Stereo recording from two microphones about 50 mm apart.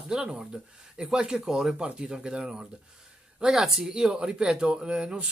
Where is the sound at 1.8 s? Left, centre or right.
Centre.